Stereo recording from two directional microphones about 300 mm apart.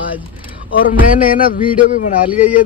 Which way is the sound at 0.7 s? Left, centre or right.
Left.